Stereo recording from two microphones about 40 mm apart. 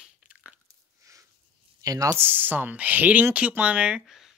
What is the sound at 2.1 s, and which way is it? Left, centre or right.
Speech, right.